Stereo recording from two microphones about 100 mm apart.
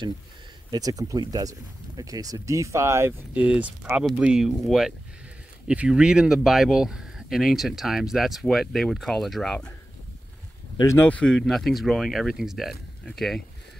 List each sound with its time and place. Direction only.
0.7 s speech: 40° right (ahead or behind)
3.3 s speech: 15° right (ahead or behind); by 9.7 s 5° left (ahead or behind)
11.1 s speech: 10° left (ahead or behind)